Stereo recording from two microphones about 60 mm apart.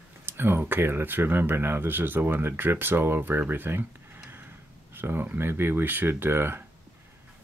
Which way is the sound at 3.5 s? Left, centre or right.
Right.